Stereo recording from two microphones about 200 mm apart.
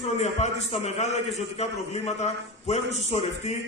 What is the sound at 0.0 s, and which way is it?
A man's voice, 35° left (ahead or behind).